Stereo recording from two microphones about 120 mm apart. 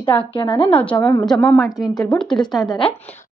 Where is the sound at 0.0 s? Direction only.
45° left (ahead or behind).